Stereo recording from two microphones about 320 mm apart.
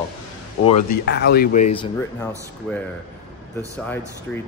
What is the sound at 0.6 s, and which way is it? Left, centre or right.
Speech, left.